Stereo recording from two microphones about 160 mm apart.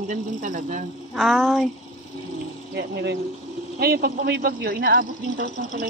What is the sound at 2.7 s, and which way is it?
Speech, 90° right.